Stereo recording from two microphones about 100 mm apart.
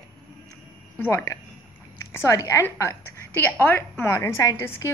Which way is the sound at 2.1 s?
30° left (ahead or behind).